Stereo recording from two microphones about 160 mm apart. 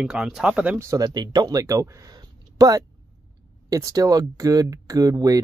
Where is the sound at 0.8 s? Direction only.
25° right (ahead or behind).